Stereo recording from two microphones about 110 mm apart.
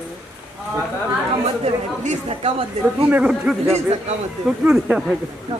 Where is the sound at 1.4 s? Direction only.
65° right (ahead or behind).